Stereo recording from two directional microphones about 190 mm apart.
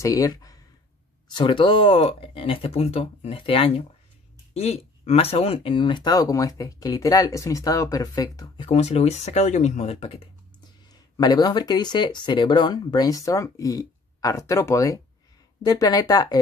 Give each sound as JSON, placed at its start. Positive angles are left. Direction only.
{"t": 0.0, "sound": "speech", "side_deg": 15}
{"t": 8.7, "sound": "speech", "side_deg": 35}
{"t": 10.9, "sound": "speech", "side_deg": 20}